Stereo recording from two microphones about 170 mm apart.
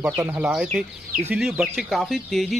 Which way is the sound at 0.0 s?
5° right (ahead or behind).